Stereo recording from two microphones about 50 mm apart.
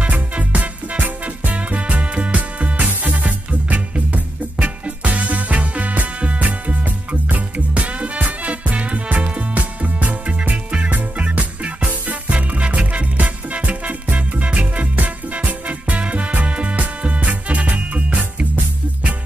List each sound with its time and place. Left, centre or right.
0.0 s music: right